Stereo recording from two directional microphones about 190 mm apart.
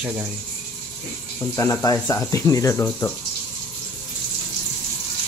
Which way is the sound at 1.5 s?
15° left (ahead or behind).